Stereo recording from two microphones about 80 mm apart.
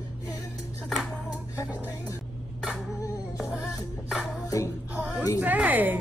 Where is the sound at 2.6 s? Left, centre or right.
Centre.